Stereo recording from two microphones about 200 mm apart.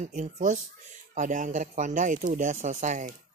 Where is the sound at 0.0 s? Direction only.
40° right (ahead or behind).